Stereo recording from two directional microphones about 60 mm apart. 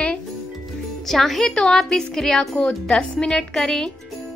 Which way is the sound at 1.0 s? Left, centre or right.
Centre.